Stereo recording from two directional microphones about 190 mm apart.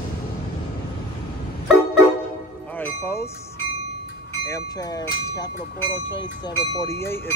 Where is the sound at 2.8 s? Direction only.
15° left (ahead or behind).